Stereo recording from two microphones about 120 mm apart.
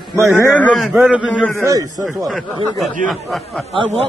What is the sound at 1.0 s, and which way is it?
Speech, 10° right (ahead or behind).